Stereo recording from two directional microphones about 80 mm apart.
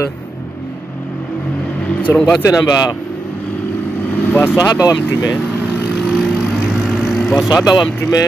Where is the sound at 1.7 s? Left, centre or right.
Centre.